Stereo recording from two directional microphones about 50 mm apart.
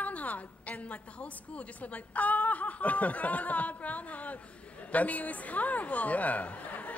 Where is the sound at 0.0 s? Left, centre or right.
Left.